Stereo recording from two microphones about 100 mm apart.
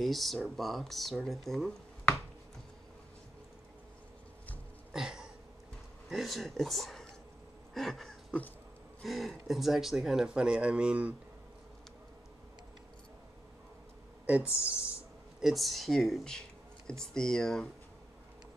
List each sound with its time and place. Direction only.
0.0 s speech: centre (ahead or behind)
4.9 s a sound: 5° right (ahead or behind)
6.0 s speech: centre (ahead or behind)
7.7 s a sound: centre (ahead or behind)
9.0 s speech: centre (ahead or behind)
14.4 s speech: 25° left (ahead or behind)
15.4 s speech: centre (ahead or behind)